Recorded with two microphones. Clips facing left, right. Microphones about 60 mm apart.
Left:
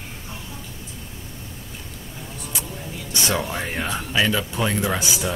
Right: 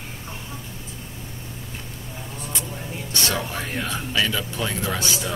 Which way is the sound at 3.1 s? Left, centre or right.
Centre.